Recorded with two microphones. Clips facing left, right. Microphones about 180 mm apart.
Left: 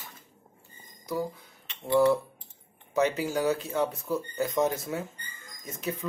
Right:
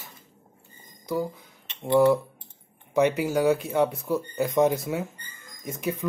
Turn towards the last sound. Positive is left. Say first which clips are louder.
# right 4 dB
turn(degrees=-10)  # may be behind; listen again after turning